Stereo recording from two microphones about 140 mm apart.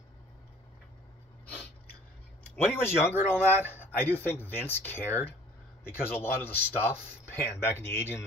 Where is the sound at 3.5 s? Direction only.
15° right (ahead or behind).